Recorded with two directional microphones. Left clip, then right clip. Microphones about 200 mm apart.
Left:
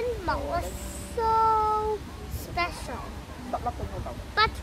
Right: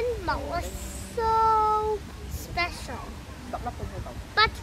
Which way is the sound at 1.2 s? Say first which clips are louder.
Right 1 dB; 10° left (ahead or behind).